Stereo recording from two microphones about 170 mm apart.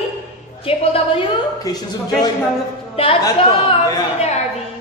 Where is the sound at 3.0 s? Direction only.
35° left (ahead or behind).